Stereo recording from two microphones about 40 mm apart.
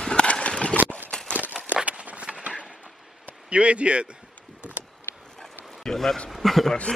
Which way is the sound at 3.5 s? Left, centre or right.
Right.